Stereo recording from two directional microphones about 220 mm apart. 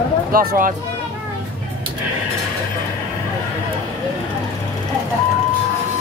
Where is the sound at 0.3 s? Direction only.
40° right (ahead or behind).